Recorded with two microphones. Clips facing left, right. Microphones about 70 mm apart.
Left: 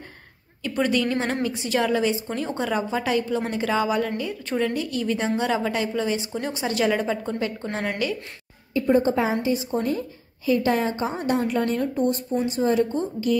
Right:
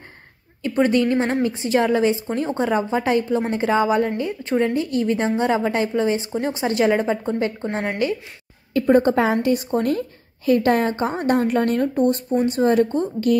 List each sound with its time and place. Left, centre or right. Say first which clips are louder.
0.6 s a woman's voice: right 5 dB; right
8.7 s a woman's voice: right 4 dB; right